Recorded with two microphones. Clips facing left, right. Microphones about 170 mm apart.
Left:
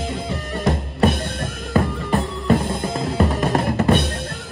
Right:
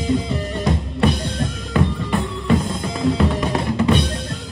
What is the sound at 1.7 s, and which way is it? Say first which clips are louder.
Music: left 1 dB; 40° left (ahead or behind).